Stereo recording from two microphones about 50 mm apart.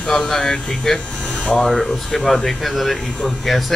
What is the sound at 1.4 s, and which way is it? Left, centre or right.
Speech, left.